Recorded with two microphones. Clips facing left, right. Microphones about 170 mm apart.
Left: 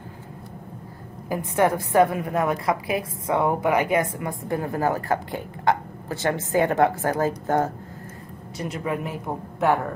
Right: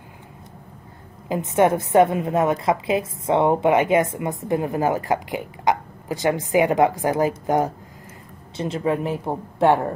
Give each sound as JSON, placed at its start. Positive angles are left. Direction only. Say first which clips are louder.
{"t": 1.3, "sound": "a woman's voice", "louder": "right 3 dB", "side_deg": -20}
{"t": 8.5, "sound": "a woman's voice", "louder": "right 5 dB", "side_deg": -30}